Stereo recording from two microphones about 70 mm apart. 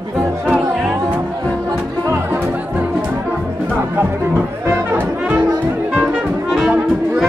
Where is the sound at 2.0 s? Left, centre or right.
Right.